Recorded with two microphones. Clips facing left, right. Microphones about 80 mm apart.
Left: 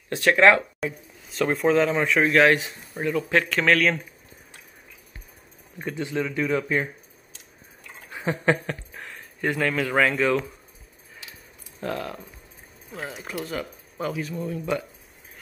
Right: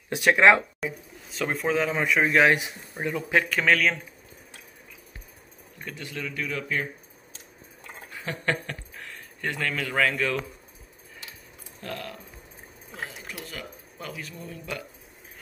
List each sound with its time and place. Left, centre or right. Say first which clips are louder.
0.1 s speech: left 1 dB; centre
0.7 s a man's voice: left 2 dB; centre
3.6 s a man's voice: left 2 dB; centre
5.9 s a man's voice: left 8 dB; left
8.1 s a sound: left 6 dB; left
9.4 s a man's voice: left 5 dB; centre
11.8 s a man's voice: left 6 dB; left
13.1 s speech: left 8 dB; left